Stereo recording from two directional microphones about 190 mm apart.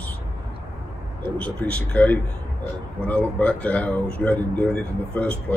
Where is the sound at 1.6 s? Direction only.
5° left (ahead or behind).